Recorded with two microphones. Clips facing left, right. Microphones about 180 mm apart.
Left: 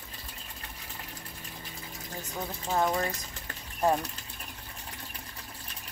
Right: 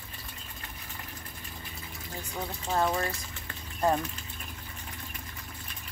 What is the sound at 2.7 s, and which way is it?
Speech, 5° left (ahead or behind).